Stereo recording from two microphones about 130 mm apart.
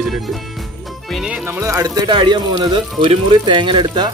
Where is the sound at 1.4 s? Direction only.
20° right (ahead or behind).